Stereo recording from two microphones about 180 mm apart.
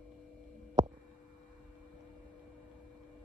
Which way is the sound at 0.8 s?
40° right (ahead or behind).